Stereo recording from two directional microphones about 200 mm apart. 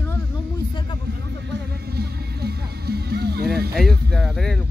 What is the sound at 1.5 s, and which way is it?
Music, 55° right (ahead or behind).